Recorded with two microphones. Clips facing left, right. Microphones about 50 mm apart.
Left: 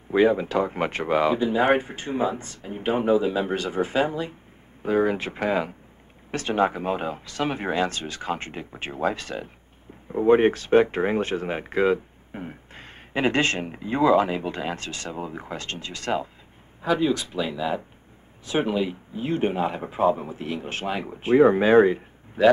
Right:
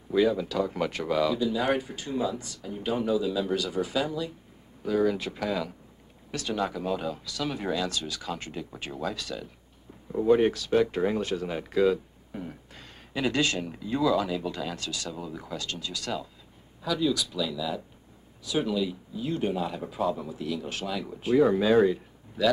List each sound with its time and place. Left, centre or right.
0.1 s speech: left